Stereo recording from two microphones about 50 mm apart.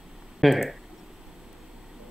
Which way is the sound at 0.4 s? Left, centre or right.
Centre.